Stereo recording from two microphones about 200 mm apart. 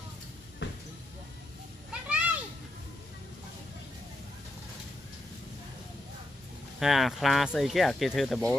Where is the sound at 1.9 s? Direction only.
5° right (ahead or behind).